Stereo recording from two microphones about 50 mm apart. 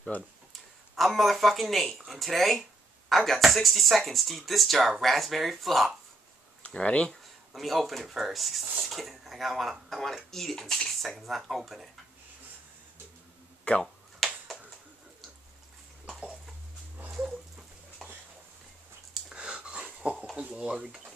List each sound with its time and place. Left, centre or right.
0.5 s speech: centre
6.6 s speech: left
7.1 s speech: centre
13.7 s speech: left
14.2 s finger snapping: centre
17.1 s dog: centre
19.2 s a sound: centre
20.3 s speech: centre